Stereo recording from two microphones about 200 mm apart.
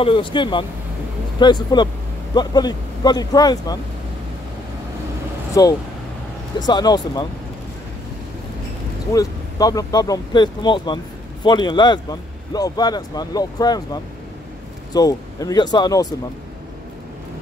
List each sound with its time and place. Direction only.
0.0 s speech: 25° left (ahead or behind)
5.5 s speech: 20° left (ahead or behind)
9.1 s speech: 20° left (ahead or behind)